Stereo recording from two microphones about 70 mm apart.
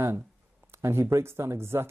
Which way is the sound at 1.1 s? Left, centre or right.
Right.